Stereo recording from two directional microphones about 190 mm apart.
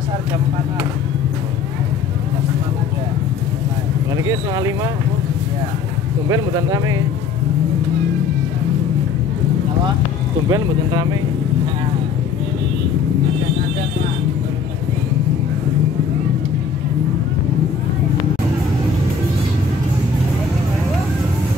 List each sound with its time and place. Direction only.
4.2 s speech: 20° right (ahead or behind)
6.2 s speech: 15° right (ahead or behind)
10.5 s speech: 20° right (ahead or behind)